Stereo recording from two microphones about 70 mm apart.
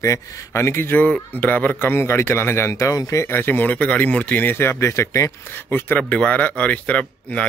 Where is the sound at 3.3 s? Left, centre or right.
Left.